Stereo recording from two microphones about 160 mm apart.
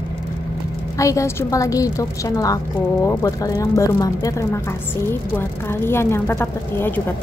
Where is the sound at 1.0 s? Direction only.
20° left (ahead or behind).